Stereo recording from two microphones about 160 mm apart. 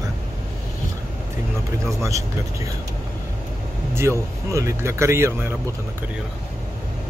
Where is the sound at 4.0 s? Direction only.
20° right (ahead or behind).